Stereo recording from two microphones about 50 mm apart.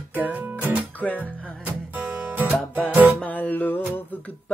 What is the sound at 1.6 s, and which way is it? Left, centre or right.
Music, right.